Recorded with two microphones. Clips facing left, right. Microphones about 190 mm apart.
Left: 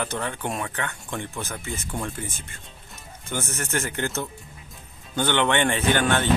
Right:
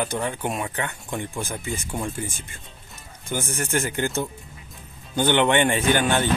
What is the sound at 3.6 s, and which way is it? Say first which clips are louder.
Speech: right 4 dB; 15° right (ahead or behind).